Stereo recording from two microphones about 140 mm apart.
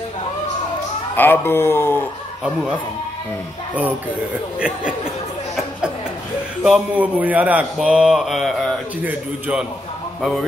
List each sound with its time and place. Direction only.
1.1 s a man's voice: 15° left (ahead or behind)
2.4 s a man's voice: 5° right (ahead or behind)
4.6 s a man's voice: 5° right (ahead or behind)
6.6 s a man's voice: 5° right (ahead or behind)